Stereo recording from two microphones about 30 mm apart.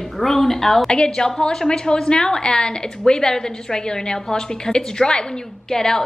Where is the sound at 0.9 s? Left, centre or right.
Left.